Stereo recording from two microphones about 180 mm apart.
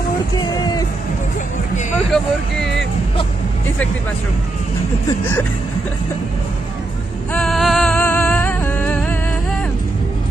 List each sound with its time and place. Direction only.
0.4 s music: 20° left (ahead or behind)
2.0 s speech: centre (ahead or behind)
7.3 s music: centre (ahead or behind)